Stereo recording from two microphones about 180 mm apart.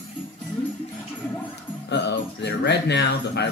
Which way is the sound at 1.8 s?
75° left (ahead or behind).